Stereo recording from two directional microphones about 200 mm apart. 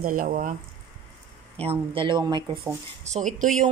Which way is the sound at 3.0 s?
35° right (ahead or behind).